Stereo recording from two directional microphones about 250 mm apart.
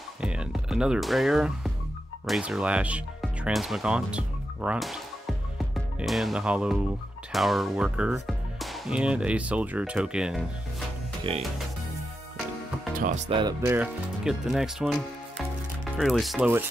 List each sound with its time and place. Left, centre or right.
0.2 s speech: centre
11.3 s music: right
12.9 s speech: right
13.3 s speech: centre